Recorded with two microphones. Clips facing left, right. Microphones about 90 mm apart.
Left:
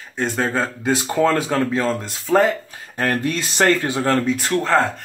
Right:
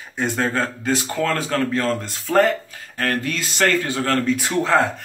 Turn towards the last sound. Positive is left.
turn(degrees=-5)  # may be behind; listen again after turning